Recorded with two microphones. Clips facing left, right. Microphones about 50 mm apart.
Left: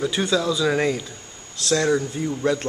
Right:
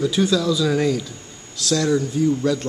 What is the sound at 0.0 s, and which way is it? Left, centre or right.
Speech, left.